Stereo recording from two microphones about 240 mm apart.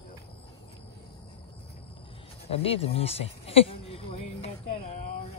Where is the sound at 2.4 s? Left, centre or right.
Left.